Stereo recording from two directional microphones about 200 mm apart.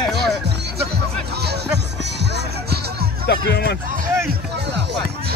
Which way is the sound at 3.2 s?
55° left (ahead or behind).